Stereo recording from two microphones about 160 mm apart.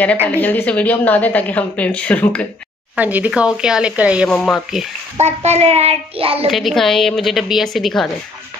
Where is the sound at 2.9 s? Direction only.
10° right (ahead or behind).